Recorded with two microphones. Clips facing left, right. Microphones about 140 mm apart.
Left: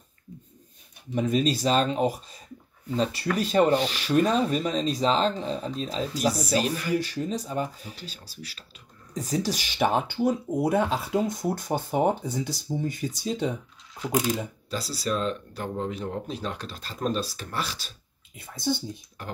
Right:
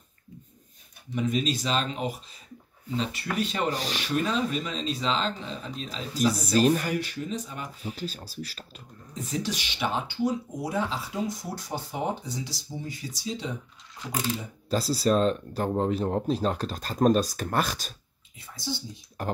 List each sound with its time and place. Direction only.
1.1 s speech: 40° left (ahead or behind)
3.7 s speech: 40° right (ahead or behind)
4.1 s speech: 40° left (ahead or behind)
6.6 s speech: 40° right (ahead or behind)
6.9 s speech: 35° left (ahead or behind)
7.8 s speech: 40° right (ahead or behind)
9.1 s speech: 40° left (ahead or behind); by 13.5 s 55° left (ahead or behind)
14.7 s speech: 40° right (ahead or behind)
18.4 s speech: 55° left (ahead or behind)
19.2 s speech: 40° right (ahead or behind)